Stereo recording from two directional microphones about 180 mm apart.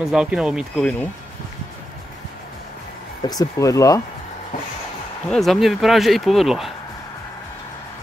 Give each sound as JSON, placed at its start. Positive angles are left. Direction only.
{"t": 0.0, "sound": "speech", "side_deg": -5}
{"t": 3.3, "sound": "speech", "side_deg": 20}
{"t": 5.3, "sound": "speech", "side_deg": 0}